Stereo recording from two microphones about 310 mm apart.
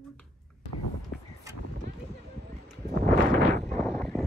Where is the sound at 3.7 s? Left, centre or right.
Centre.